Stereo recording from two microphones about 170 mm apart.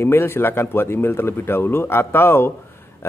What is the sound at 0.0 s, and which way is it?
A man's voice, 15° left (ahead or behind).